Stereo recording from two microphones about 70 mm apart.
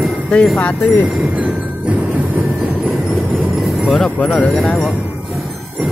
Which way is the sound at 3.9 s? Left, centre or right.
Centre.